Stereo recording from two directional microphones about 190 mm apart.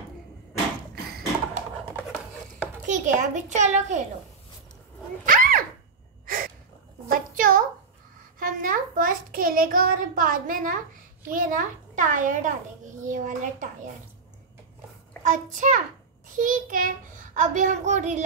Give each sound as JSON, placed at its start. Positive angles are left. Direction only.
{"t": 2.9, "sound": "a child's voice", "side_deg": -40}
{"t": 5.2, "sound": "dog", "side_deg": -45}
{"t": 6.2, "sound": "gasp", "side_deg": -45}
{"t": 7.1, "sound": "a sound", "side_deg": -45}
{"t": 8.4, "sound": "a child's voice", "side_deg": -45}
{"t": 15.2, "sound": "a child's voice", "side_deg": -40}